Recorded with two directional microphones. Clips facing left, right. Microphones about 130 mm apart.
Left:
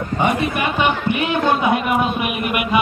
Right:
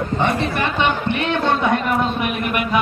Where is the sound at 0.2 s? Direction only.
10° left (ahead or behind).